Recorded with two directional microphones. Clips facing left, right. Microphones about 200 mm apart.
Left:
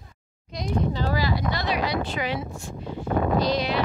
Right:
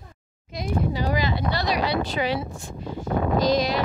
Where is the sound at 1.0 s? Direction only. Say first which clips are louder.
Right 1 dB; 20° right (ahead or behind).